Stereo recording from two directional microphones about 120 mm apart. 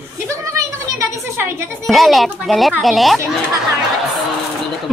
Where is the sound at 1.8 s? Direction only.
Centre (ahead or behind).